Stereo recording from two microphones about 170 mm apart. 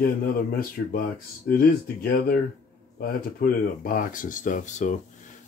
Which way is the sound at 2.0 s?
55° left (ahead or behind).